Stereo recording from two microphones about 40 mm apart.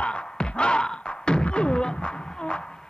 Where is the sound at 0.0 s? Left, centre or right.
Left.